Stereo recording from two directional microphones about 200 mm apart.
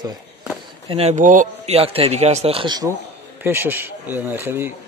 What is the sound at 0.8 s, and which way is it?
Speech, 30° right (ahead or behind).